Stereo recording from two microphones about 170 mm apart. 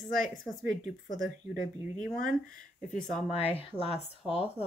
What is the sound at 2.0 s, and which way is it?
Speech, 55° left (ahead or behind).